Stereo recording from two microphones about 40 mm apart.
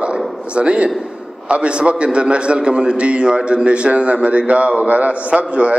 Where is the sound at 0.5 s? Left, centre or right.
Right.